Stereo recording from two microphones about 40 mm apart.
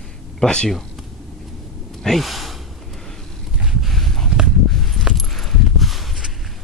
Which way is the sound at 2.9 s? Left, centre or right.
Centre.